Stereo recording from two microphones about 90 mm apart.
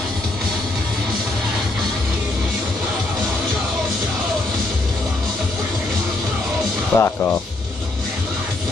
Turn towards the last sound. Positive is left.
turn(degrees=25)  # may be behind; listen again after turning